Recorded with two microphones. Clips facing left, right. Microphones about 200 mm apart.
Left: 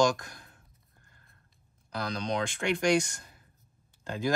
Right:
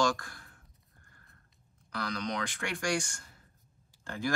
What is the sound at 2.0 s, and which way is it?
Speech, 25° left (ahead or behind).